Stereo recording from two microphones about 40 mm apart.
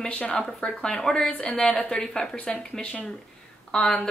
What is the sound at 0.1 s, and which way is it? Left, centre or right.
Speech, left.